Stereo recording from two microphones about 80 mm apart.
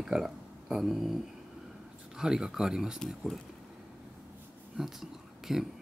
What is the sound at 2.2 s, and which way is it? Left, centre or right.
Speech, centre.